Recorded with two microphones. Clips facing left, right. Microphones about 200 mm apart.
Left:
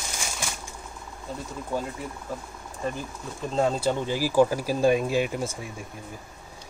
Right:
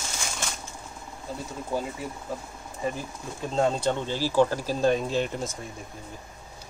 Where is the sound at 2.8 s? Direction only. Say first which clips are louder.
Even; 5° right (ahead or behind).